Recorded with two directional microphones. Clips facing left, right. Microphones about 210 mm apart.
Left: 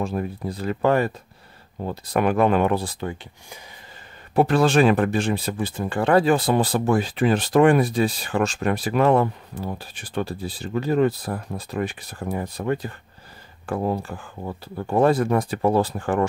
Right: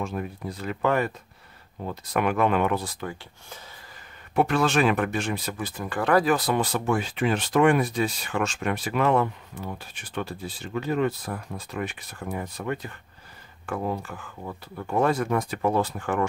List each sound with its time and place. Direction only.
0.0 s speech: 35° left (ahead or behind)
4.4 s speech: 35° left (ahead or behind)